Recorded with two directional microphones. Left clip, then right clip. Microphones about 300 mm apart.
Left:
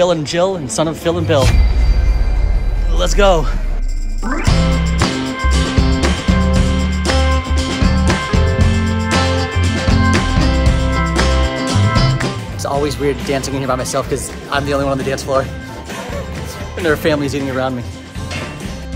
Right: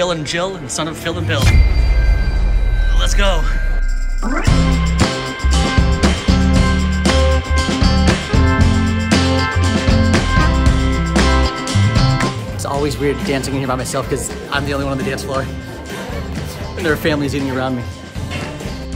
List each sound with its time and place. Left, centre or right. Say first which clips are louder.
0.0 s speech: left 4 dB; centre
3.0 s speech: left 7 dB; centre
4.2 s music: even; centre
16.8 s speech: left 2 dB; centre